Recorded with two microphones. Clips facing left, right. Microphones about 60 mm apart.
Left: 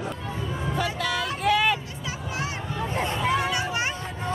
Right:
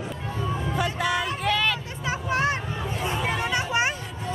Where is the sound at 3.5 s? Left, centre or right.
Right.